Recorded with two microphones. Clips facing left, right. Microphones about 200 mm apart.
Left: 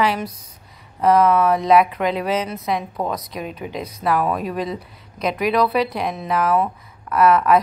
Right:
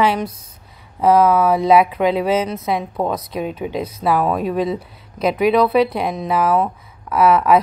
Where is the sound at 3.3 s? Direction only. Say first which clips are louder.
Right 5 dB; 30° right (ahead or behind).